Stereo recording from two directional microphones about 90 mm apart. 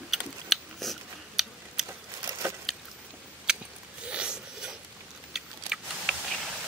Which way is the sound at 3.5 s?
10° right (ahead or behind).